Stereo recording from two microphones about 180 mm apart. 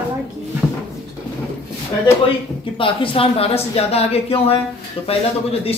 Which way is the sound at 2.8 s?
30° left (ahead or behind).